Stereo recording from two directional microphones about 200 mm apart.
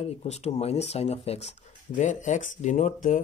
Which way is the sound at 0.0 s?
30° left (ahead or behind).